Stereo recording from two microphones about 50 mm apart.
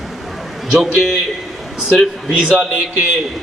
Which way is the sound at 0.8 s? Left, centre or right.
Centre.